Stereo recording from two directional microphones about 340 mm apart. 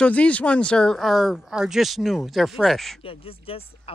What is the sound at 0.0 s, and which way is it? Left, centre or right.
Speech, centre.